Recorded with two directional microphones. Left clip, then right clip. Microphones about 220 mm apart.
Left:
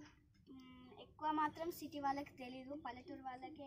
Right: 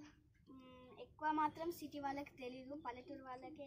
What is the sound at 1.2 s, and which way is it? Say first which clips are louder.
Speech: even; 15° left (ahead or behind).